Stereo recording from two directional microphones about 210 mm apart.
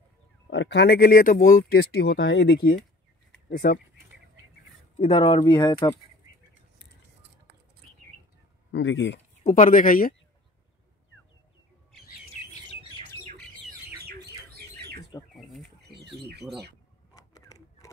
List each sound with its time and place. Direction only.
0.5 s speech: 60° left (ahead or behind)
4.9 s speech: 25° left (ahead or behind)
8.7 s speech: 60° left (ahead or behind)
9.4 s speech: 40° left (ahead or behind)
14.0 s bird: 50° right (ahead or behind)
15.0 s bird: 15° left (ahead or behind)